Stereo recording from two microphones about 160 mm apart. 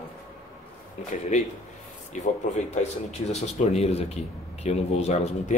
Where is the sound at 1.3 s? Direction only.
45° left (ahead or behind).